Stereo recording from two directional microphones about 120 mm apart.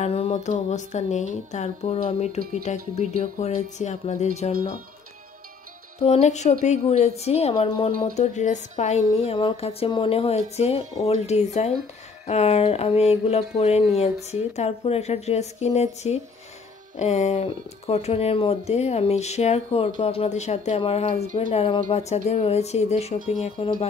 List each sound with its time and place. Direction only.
0.0 s speech: 60° left (ahead or behind)
6.0 s a woman's voice: 65° left (ahead or behind)
20.2 s a woman's voice: 70° left (ahead or behind); by 22.0 s 45° left (ahead or behind)
22.1 s speech: 60° left (ahead or behind)